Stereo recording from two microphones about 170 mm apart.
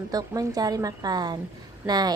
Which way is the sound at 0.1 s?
20° right (ahead or behind).